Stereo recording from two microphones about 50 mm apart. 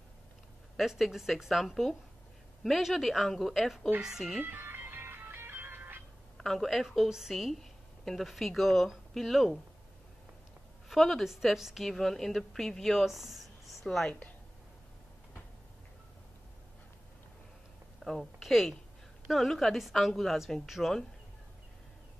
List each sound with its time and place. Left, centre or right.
0.7 s a woman's voice: centre
4.6 s music: right
6.3 s a woman's voice: centre
10.9 s a woman's voice: centre
13.0 s speech: centre
18.0 s a woman's voice: centre